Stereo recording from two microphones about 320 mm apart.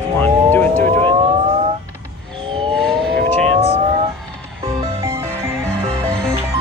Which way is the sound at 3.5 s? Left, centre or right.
Centre.